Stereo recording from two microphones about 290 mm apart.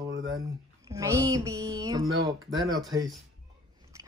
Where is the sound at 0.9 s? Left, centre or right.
Centre.